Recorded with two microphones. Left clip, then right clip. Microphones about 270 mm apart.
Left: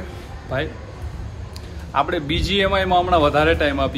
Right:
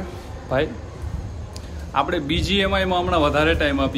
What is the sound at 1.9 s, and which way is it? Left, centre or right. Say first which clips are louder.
A man's voice: left 1 dB; centre.